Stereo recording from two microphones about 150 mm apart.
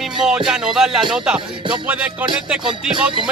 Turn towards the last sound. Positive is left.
turn(degrees=-5)  # may be behind; listen again after turning